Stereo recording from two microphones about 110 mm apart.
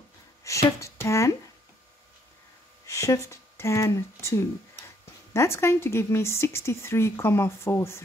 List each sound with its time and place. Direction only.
0.4 s speech: 30° left (ahead or behind)
2.9 s speech: 30° left (ahead or behind)